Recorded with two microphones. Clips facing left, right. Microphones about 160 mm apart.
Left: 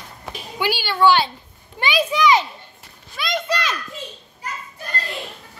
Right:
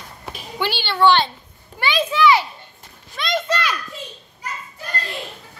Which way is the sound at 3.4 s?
15° left (ahead or behind).